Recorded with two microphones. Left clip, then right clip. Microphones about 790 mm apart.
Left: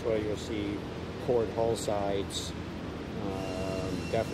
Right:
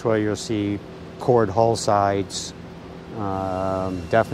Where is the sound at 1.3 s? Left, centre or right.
Right.